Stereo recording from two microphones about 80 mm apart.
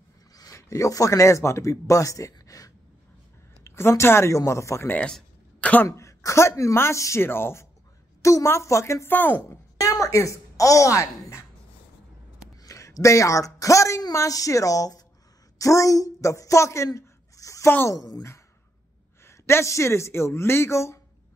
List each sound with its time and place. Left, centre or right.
0.3 s speech: left
3.6 s a woman's voice: left
4.8 s speech: centre
5.9 s speech: left
8.2 s speech: left
9.1 s speech: left
9.8 s a woman's voice: left
12.6 s a woman's voice: left
19.2 s speech: left